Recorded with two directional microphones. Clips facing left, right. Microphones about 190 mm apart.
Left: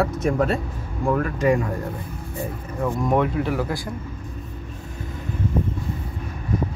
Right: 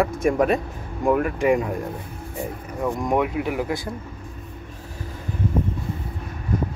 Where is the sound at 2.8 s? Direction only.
10° right (ahead or behind).